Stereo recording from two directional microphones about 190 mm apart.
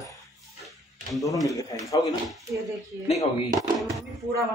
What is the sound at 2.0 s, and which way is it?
Speech, centre (ahead or behind).